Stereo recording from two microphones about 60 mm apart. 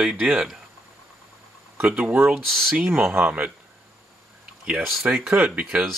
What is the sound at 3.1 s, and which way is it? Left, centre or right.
Speech, right.